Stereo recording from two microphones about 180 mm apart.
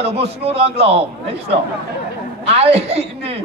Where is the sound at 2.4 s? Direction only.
35° right (ahead or behind).